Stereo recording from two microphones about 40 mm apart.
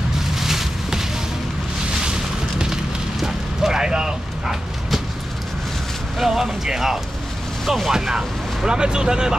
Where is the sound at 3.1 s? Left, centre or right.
Centre.